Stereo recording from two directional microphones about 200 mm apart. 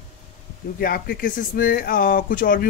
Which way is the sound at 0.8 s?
45° left (ahead or behind).